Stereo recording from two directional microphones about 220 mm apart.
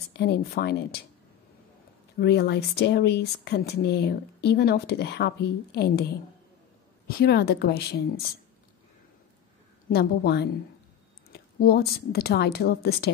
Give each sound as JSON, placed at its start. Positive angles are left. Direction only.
{"t": 0.1, "sound": "speech", "side_deg": 50}
{"t": 2.1, "sound": "speech", "side_deg": 45}
{"t": 7.2, "sound": "speech", "side_deg": 45}
{"t": 9.8, "sound": "speech", "side_deg": 45}